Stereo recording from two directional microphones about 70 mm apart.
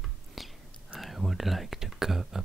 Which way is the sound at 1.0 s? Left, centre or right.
Centre.